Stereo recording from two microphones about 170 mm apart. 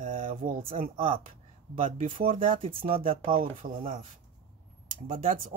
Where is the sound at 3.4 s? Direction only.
55° right (ahead or behind).